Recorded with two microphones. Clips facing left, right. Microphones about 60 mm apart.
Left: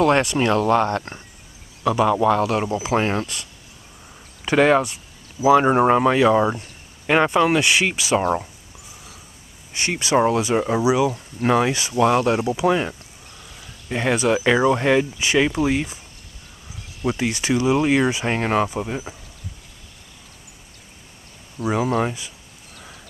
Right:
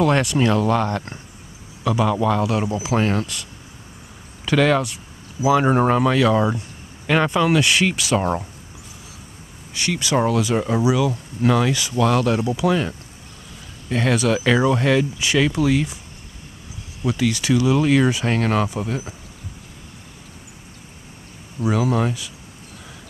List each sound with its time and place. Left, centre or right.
0.3 s speech: centre
1.9 s speech: centre
2.7 s speech: left
4.5 s speech: left
5.5 s speech: centre
9.8 s speech: left
13.8 s speech: centre
17.0 s speech: left
21.5 s speech: centre